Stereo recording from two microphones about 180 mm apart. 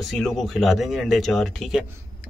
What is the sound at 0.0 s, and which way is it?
Speech, centre (ahead or behind).